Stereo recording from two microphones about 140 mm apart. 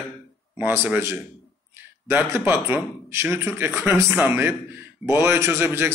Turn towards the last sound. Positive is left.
turn(degrees=-15)  # may be behind; listen again after turning